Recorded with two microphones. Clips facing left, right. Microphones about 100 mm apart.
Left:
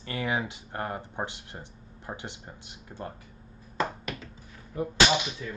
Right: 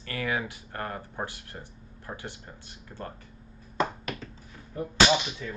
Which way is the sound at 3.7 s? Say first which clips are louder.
Right 1 dB; centre (ahead or behind).